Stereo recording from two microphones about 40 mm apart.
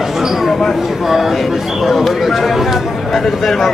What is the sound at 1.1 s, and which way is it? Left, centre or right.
Speech, centre.